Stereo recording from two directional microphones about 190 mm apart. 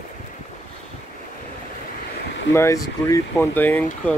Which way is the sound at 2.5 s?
15° left (ahead or behind).